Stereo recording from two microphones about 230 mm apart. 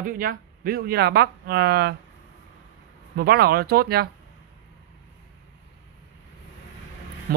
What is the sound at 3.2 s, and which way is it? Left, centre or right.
Speech, right.